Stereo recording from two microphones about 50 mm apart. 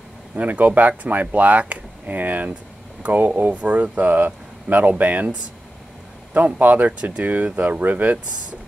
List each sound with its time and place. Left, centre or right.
0.4 s speech: right
6.3 s speech: right